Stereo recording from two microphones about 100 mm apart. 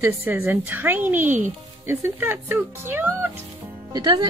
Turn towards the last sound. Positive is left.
turn(degrees=-40)  # may be behind; listen again after turning